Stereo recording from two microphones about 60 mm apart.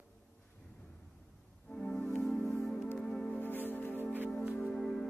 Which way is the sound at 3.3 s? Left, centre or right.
Left.